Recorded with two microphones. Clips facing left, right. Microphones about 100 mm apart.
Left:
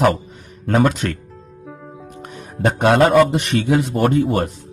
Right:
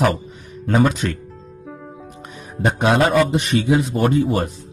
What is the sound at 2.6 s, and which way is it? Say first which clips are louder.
A man's voice: left 3 dB; 60° left (ahead or behind).